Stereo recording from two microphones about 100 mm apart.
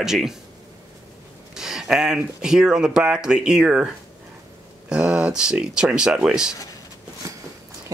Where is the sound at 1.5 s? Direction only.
5° right (ahead or behind).